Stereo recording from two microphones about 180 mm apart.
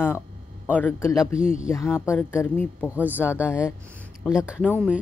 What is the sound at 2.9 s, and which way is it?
Speech, 10° right (ahead or behind).